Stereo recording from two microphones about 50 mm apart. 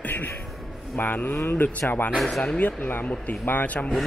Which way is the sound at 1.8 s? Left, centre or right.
Left.